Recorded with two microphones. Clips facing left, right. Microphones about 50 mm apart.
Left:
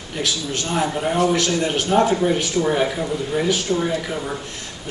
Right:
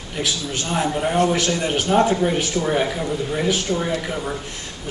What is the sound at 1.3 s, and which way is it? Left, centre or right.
Speech, centre.